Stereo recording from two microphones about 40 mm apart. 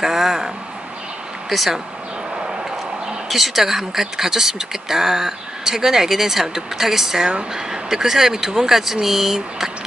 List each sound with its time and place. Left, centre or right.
0.0 s speech: centre
1.5 s speech: centre
3.3 s speech: centre